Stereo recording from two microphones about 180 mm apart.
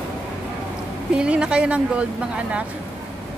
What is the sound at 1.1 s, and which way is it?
Speech, 5° right (ahead or behind).